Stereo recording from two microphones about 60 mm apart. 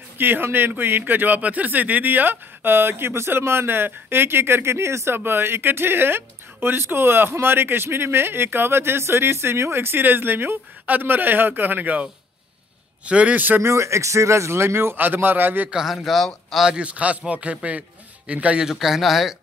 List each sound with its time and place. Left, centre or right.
0.2 s a man's voice: right
13.6 s a man's voice: right
15.7 s a man's voice: centre
16.6 s a man's voice: centre
18.7 s a man's voice: centre